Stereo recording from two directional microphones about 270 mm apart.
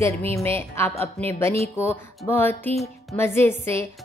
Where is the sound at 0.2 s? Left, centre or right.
Right.